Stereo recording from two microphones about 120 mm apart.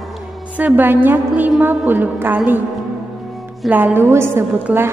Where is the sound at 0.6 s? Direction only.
15° right (ahead or behind).